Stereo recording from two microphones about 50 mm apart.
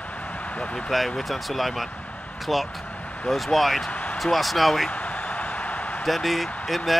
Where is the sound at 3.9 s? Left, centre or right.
Left.